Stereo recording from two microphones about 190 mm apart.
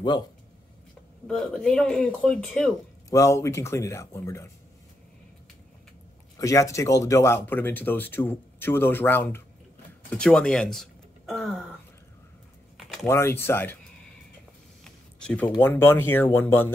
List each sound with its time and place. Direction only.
1.2 s speech: 5° left (ahead or behind)
3.1 s speech: 15° left (ahead or behind)
6.3 s speech: 15° left (ahead or behind); by 11.6 s centre (ahead or behind)
13.0 s speech: 15° left (ahead or behind)
15.1 s speech: 5° left (ahead or behind)